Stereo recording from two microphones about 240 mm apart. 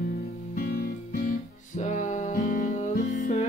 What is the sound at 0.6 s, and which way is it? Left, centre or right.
Music, left.